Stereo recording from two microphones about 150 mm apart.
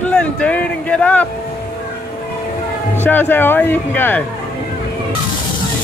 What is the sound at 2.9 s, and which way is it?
Speech, 10° left (ahead or behind).